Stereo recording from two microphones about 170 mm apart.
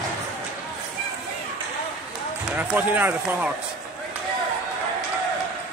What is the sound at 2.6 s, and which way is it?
Speech, 10° right (ahead or behind).